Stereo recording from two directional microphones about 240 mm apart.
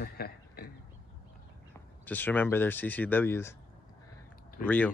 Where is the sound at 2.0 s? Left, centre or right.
Centre.